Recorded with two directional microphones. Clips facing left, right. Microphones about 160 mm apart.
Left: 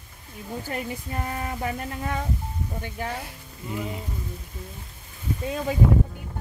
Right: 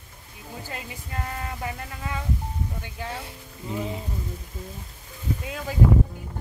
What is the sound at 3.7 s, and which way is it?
Speech, 25° right (ahead or behind).